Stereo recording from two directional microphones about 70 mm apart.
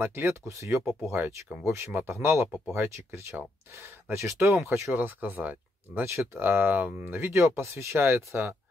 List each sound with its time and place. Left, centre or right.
0.0 s speech: right
1.2 s speech: right
4.9 s speech: right
6.0 s speech: right
6.4 s speech: right